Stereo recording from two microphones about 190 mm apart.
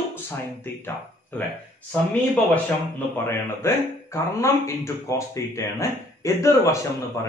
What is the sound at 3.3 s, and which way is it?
Speech, 15° left (ahead or behind).